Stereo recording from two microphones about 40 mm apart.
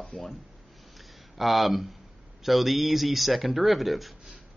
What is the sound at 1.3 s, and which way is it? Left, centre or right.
Speech, centre.